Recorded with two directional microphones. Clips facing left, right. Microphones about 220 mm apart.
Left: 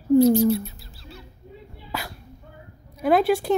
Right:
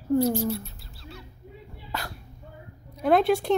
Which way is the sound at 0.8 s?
Centre (ahead or behind).